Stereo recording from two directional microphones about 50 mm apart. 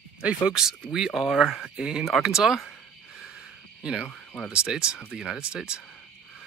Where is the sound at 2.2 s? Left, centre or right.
Centre.